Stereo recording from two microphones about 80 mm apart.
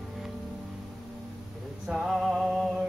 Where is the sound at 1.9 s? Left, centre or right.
Centre.